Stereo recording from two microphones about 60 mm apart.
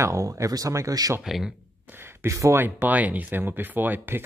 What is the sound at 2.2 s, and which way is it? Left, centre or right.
Speech, right.